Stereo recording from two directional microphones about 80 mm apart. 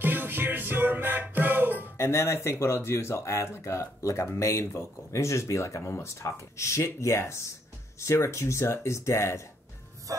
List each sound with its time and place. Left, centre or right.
0.0 s music: right
2.0 s speech: left